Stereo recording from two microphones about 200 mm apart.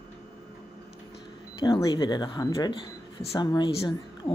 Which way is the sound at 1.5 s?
25° left (ahead or behind).